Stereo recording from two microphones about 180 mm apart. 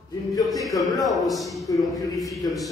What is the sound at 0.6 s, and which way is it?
Speech, 20° left (ahead or behind).